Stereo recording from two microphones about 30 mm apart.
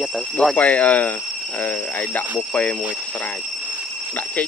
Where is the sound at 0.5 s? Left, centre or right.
Left.